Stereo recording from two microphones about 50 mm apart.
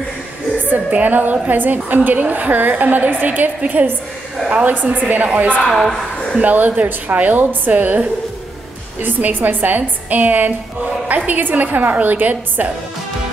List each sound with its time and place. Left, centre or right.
0.8 s a woman's voice: right
5.7 s a woman's voice: centre
6.4 s a woman's voice: right